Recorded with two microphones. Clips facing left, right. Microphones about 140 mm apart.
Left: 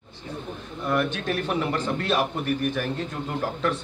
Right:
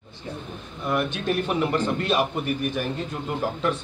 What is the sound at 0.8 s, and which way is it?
A man's voice, 15° right (ahead or behind).